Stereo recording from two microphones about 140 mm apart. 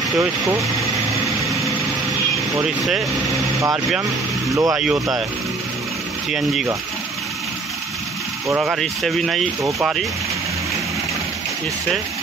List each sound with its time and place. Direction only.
0.4 s speech: 20° right (ahead or behind)
2.6 s speech: 5° right (ahead or behind)
4.5 s speech: 25° right (ahead or behind)
4.7 s speech: 5° right (ahead or behind)
6.3 s speech: 5° right (ahead or behind)
8.6 s speech: centre (ahead or behind)
9.6 s speech: 20° right (ahead or behind)